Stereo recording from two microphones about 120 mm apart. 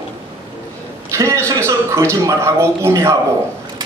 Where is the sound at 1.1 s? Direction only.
25° right (ahead or behind).